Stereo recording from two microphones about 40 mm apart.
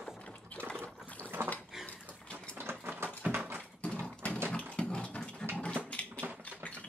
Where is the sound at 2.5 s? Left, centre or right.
Right.